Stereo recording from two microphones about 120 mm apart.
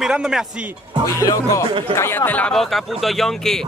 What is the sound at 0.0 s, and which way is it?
Speech, 5° right (ahead or behind).